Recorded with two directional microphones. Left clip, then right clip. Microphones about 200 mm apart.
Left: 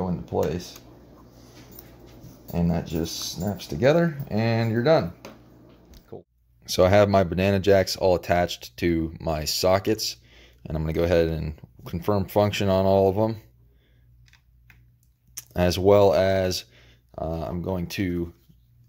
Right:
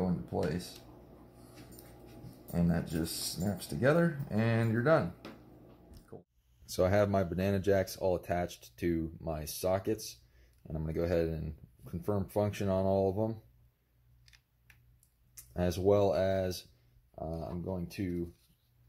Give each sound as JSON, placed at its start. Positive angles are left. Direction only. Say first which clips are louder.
{"t": 0.3, "sound": "speech", "louder": "left 11 dB", "side_deg": 40}
{"t": 2.5, "sound": "speech", "louder": "left 7 dB", "side_deg": 20}
{"t": 3.5, "sound": "speech", "louder": "left 9 dB", "side_deg": 30}
{"t": 6.1, "sound": "speech", "louder": "left 10 dB", "side_deg": 30}
{"t": 6.6, "sound": "speech", "louder": "left 11 dB", "side_deg": 10}
{"t": 15.3, "sound": "speech", "louder": "left 11 dB", "side_deg": 25}